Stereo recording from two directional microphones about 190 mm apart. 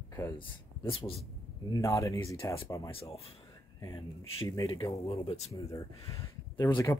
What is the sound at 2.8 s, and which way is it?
Speech, 30° left (ahead or behind).